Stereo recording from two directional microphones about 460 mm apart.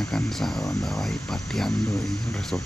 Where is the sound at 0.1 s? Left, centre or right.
Centre.